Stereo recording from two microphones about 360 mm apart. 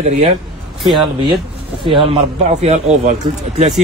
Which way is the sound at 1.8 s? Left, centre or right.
Centre.